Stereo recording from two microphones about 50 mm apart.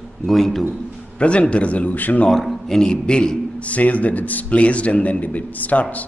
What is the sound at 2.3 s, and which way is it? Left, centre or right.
A man's voice, centre.